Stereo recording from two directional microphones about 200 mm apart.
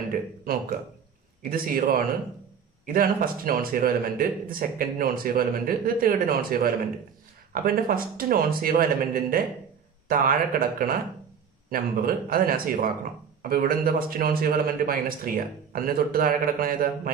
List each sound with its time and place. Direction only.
1.4 s speech: 45° right (ahead or behind)